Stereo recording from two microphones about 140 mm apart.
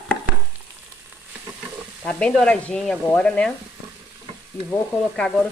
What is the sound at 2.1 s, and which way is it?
Sizzle, 5° left (ahead or behind).